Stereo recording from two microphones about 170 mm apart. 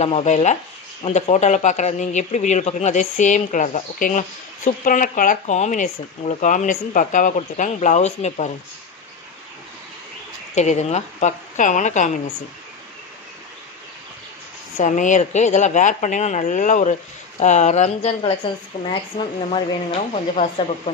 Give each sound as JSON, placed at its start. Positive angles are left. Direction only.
{"t": 0.0, "sound": "speech", "side_deg": 40}
{"t": 10.5, "sound": "speech", "side_deg": 40}
{"t": 14.8, "sound": "speech", "side_deg": 45}
{"t": 19.5, "sound": "speech", "side_deg": 40}